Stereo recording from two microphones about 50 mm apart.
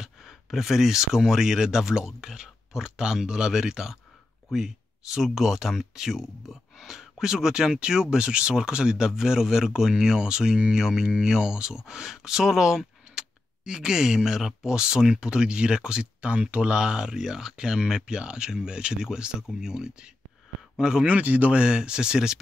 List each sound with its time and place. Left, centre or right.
0.0 s speech: centre
21.1 s speech: right; by 22.4 s centre